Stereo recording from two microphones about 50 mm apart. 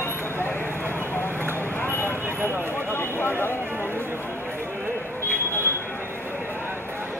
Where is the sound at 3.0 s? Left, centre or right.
Left.